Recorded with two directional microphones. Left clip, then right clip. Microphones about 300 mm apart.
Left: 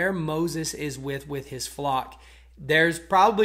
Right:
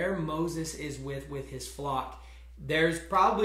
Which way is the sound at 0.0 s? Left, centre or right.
Left.